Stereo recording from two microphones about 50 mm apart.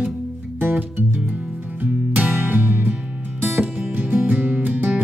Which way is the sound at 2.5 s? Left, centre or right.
Right.